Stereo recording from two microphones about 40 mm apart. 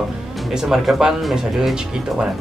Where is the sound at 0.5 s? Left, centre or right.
Centre.